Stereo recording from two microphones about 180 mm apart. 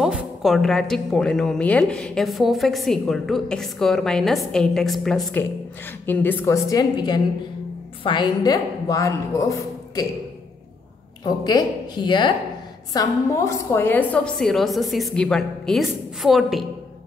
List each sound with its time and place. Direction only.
0.0 s a woman's voice: 5° right (ahead or behind); by 10.0 s 20° left (ahead or behind)
11.2 s a woman's voice: 20° left (ahead or behind); by 16.6 s centre (ahead or behind)